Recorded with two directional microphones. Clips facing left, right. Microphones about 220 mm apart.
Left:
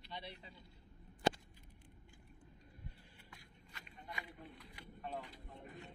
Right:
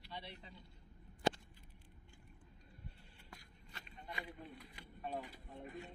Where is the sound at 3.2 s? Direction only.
30° right (ahead or behind).